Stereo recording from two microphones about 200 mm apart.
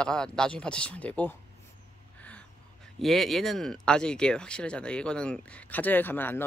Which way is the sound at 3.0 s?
Centre (ahead or behind).